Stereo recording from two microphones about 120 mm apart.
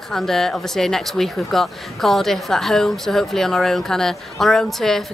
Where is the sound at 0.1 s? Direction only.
5° left (ahead or behind).